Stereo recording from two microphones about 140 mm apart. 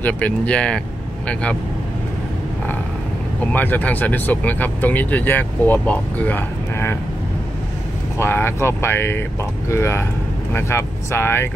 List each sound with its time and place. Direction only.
0.0 s speech: 10° left (ahead or behind)
3.5 s speech: 10° left (ahead or behind)
8.2 s speech: 15° left (ahead or behind)